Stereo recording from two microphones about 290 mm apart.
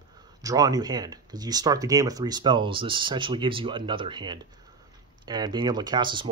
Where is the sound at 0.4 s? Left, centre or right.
Centre.